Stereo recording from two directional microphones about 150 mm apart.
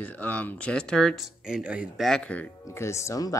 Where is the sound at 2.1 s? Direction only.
5° left (ahead or behind).